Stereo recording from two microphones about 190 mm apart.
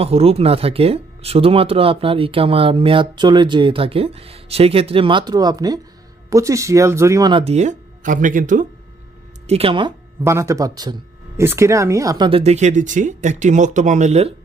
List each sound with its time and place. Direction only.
0.0 s speech: 30° right (ahead or behind)
9.5 s speech: 30° right (ahead or behind)
12.3 s speech: 30° right (ahead or behind)